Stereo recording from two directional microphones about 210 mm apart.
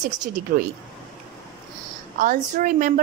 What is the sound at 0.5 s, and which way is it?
Speech, 40° right (ahead or behind).